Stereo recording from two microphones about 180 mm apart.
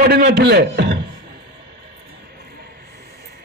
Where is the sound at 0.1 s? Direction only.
65° right (ahead or behind).